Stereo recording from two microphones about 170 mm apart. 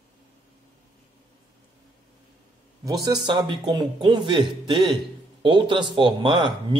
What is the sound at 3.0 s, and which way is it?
Speech, 25° right (ahead or behind).